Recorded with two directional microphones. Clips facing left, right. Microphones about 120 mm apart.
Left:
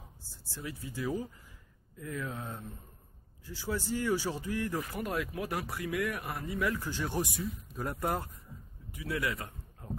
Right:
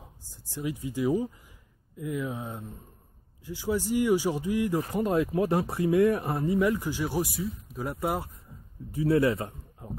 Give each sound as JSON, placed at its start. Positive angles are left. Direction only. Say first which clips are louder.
{"t": 0.3, "sound": "speech", "louder": "right 9 dB", "side_deg": -15}
{"t": 4.9, "sound": "speech", "louder": "right 9 dB", "side_deg": -25}
{"t": 6.8, "sound": "speech", "louder": "right 5 dB", "side_deg": -10}
{"t": 8.9, "sound": "a man's voice", "louder": "right 11 dB", "side_deg": -30}